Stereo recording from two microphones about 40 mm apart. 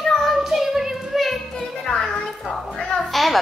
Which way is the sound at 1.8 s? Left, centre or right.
Centre.